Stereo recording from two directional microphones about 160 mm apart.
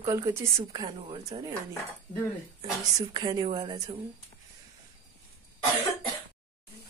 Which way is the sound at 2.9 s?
25° right (ahead or behind).